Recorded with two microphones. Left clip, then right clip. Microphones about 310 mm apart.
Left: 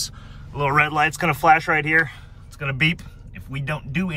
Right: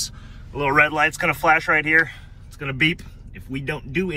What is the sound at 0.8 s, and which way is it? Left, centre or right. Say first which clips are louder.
Speech: right 1 dB; centre.